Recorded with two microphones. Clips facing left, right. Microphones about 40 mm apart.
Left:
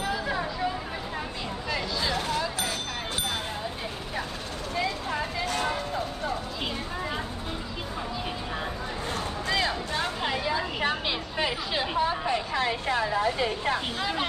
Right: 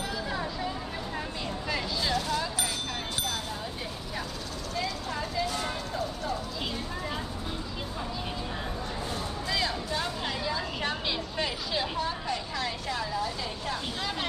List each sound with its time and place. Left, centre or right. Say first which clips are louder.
0.0 s vehicle: left 4 dB; centre
4.7 s vehicle: left 4 dB; left
9.5 s music: left 3 dB; left
10.2 s a sound: left 4 dB; left